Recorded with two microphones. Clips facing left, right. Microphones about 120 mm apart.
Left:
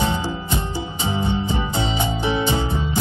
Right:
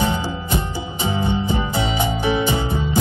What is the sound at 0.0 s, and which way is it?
Music, 15° right (ahead or behind).